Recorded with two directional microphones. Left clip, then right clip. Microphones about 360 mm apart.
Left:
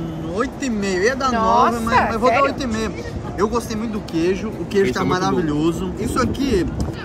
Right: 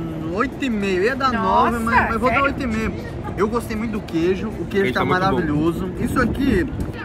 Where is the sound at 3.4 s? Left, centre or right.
Centre.